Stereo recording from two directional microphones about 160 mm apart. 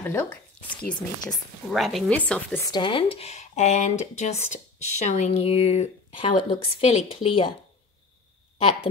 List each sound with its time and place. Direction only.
0.0 s speech: 15° left (ahead or behind)
1.3 s a woman's voice: centre (ahead or behind)
2.6 s speech: 30° left (ahead or behind)